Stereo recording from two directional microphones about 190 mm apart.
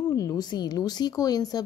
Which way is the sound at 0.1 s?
20° left (ahead or behind).